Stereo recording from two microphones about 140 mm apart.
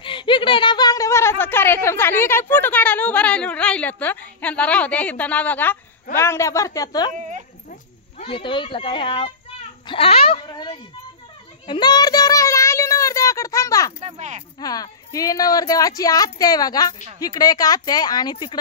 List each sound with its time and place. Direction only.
0.0 s a woman's voice: 35° left (ahead or behind)
8.2 s speech: 40° left (ahead or behind)
10.5 s a child's voice: 30° left (ahead or behind)
14.0 s speech: 55° right (ahead or behind)
14.6 s a woman's voice: 25° left (ahead or behind)